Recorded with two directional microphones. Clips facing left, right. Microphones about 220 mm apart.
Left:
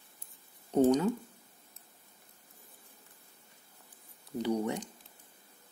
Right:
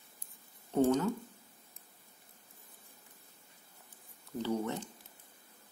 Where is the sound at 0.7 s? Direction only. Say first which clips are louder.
Left 3 dB; 20° left (ahead or behind).